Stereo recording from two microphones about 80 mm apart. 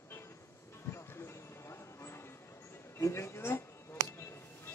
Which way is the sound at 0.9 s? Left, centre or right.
Left.